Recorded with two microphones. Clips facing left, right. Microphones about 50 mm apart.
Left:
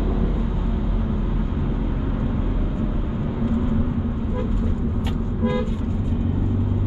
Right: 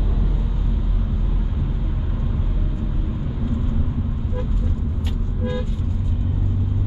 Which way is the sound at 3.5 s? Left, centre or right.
Left.